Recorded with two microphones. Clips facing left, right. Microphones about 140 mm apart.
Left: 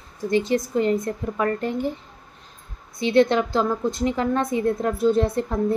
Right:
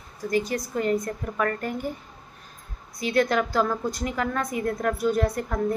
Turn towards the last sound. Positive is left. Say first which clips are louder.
# left 4 dB
turn(degrees=25)  # may be behind; listen again after turning